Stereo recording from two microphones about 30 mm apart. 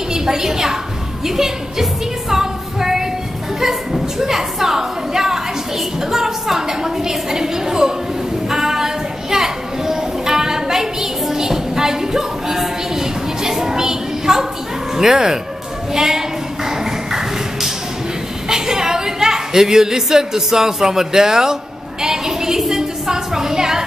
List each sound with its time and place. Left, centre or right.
0.1 s a woman's voice: centre
1.2 s music: centre
3.6 s a woman's voice: centre
8.5 s a sound: centre
15.0 s a woman's voice: centre
15.9 s a sound: centre
18.5 s a woman's voice: centre